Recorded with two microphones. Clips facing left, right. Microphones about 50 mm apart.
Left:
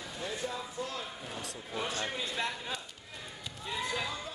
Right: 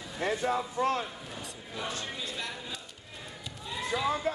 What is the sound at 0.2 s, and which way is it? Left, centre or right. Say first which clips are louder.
Speech: right 9 dB; right.